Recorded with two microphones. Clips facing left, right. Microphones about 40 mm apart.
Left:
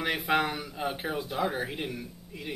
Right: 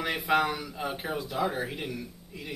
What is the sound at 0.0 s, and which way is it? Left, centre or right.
Speech, centre.